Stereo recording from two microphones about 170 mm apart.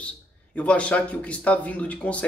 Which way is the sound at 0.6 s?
5° left (ahead or behind).